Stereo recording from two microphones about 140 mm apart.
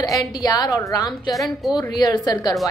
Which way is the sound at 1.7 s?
30° left (ahead or behind).